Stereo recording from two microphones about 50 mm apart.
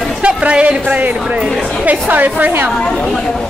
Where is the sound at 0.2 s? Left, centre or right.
Right.